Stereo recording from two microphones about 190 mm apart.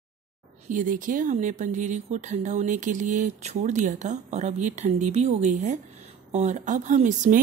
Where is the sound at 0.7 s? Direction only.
45° right (ahead or behind).